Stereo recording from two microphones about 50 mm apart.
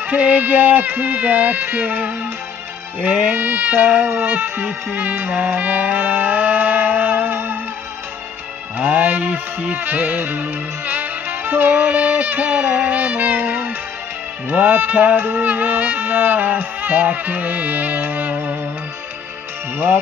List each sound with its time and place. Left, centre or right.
0.0 s music: right
8.7 s music: right